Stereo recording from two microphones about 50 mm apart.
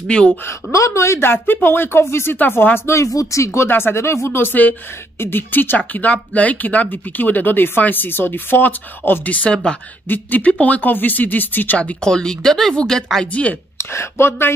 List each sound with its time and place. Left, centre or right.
0.1 s speech: left
0.5 s a woman's voice: left
1.3 s speech: left
2.9 s speech: left
3.6 s speech: left
11.8 s speech: left
12.1 s speech: centre
13.3 s speech: left
13.7 s speech: left